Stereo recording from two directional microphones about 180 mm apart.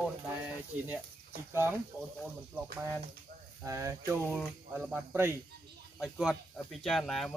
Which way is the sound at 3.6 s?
15° right (ahead or behind).